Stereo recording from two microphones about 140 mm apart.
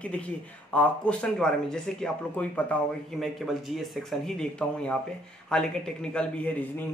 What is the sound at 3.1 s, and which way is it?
Speech, centre (ahead or behind).